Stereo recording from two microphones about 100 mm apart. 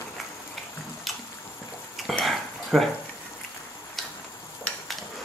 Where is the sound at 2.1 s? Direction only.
Centre (ahead or behind).